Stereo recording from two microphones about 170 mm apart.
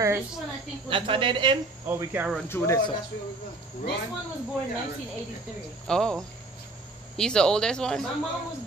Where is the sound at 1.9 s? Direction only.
15° right (ahead or behind).